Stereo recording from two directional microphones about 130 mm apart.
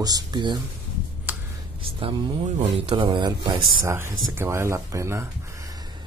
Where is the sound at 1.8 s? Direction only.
45° right (ahead or behind).